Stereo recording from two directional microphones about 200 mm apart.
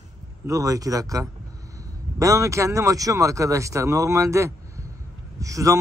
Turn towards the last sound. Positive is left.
turn(degrees=-15)  # may be behind; listen again after turning